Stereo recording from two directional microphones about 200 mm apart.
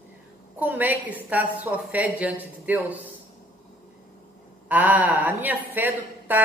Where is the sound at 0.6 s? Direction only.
10° right (ahead or behind).